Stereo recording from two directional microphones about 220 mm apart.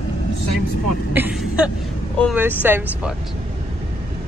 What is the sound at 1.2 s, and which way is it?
Speech, 5° right (ahead or behind).